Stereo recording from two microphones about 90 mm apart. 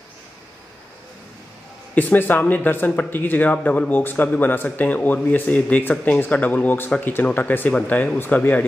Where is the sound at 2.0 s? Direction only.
20° left (ahead or behind).